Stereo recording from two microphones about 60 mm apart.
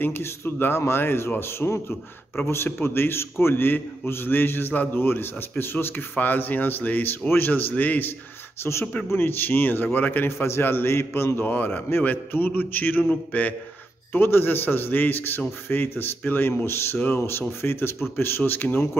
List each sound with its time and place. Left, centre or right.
0.2 s a man's voice: left
9.1 s a man's voice: left
10.4 s speech: left
11.4 s a man's voice: left
14.1 s a man's voice: left